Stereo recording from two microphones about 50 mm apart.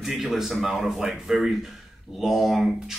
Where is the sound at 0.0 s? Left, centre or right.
Centre.